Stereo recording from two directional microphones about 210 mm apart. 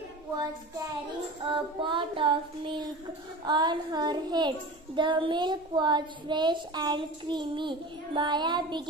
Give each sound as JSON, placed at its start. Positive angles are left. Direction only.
{"t": 1.5, "sound": "child singing", "side_deg": -25}